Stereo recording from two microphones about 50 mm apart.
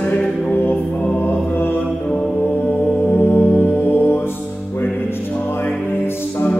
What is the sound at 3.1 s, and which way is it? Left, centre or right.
Music, left.